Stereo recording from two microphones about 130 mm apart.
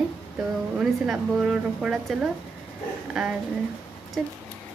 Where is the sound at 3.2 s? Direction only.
Centre (ahead or behind).